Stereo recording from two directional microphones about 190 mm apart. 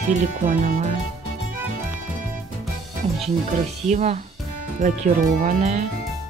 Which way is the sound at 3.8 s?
35° right (ahead or behind).